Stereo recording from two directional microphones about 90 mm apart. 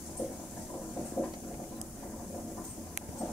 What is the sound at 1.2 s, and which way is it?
Vehicle, 25° left (ahead or behind).